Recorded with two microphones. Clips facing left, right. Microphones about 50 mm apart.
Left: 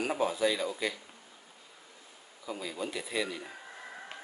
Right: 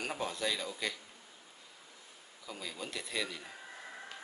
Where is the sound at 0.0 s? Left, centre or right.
Centre.